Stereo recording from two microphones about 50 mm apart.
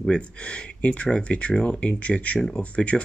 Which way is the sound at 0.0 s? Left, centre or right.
Centre.